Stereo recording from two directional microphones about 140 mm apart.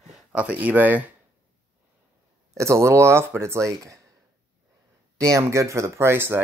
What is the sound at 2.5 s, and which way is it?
Speech, 20° right (ahead or behind).